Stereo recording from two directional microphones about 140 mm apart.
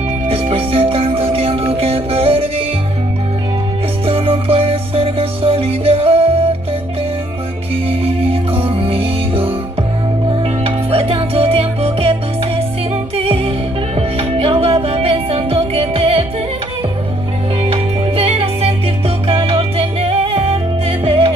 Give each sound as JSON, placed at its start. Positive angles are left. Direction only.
{"t": 0.3, "sound": "music", "side_deg": -45}
{"t": 4.0, "sound": "music", "side_deg": -40}
{"t": 7.7, "sound": "music", "side_deg": -45}
{"t": 17.6, "sound": "music", "side_deg": -40}